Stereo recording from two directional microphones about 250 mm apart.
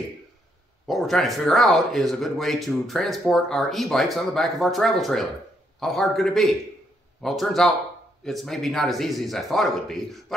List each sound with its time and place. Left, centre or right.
0.8 s speech: centre